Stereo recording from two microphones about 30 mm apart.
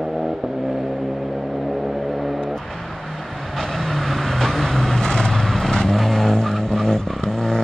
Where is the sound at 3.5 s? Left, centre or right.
Centre.